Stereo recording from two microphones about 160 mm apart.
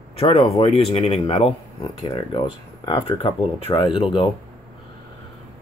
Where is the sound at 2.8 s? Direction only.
30° left (ahead or behind).